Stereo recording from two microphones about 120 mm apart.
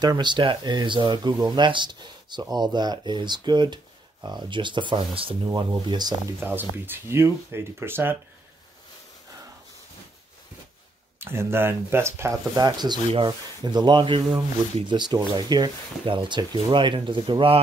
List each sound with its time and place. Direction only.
0.0 s speech: 35° right (ahead or behind)
6.4 s speech: 15° right (ahead or behind)
11.1 s speech: 20° right (ahead or behind); by 17.6 s 45° right (ahead or behind)